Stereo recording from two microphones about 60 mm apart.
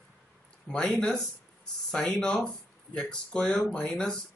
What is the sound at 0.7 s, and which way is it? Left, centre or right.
Speech, centre.